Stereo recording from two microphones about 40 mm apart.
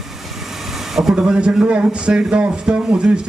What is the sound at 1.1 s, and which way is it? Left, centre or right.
Speech, right.